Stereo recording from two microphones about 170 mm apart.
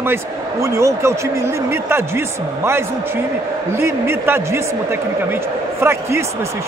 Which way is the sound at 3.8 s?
15° right (ahead or behind).